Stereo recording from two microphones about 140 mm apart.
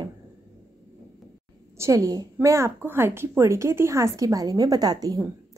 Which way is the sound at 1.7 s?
20° right (ahead or behind).